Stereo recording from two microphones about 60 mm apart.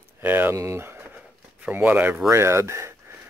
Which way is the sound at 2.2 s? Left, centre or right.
Right.